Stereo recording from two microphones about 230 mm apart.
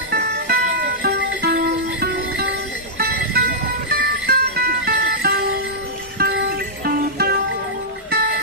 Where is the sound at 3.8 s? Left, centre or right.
Right.